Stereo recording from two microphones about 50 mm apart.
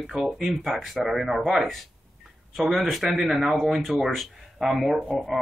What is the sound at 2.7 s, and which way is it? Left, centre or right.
Speech, centre.